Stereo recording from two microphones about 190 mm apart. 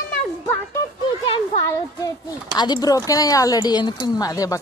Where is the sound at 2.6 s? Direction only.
20° left (ahead or behind).